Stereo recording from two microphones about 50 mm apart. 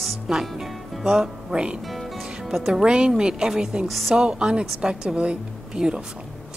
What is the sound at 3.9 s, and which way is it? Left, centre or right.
Speech, centre.